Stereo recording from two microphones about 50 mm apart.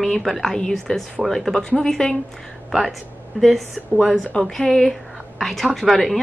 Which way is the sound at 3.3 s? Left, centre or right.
Centre.